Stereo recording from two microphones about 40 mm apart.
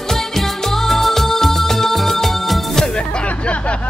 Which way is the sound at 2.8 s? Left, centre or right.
Left.